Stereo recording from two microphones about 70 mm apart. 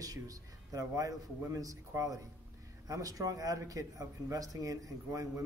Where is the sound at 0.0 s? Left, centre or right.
Right.